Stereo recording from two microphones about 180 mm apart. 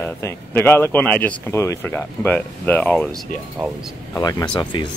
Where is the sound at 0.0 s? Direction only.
10° left (ahead or behind).